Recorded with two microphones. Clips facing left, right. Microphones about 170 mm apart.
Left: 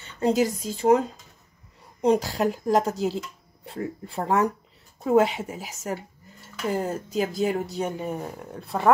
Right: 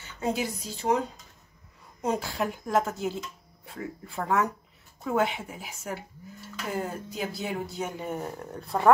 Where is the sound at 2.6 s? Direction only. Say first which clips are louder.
Left 3 dB; 35° left (ahead or behind).